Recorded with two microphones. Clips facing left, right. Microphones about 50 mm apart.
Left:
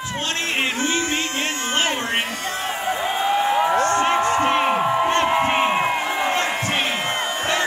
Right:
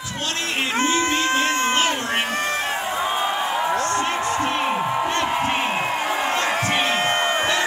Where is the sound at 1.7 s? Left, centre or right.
Left.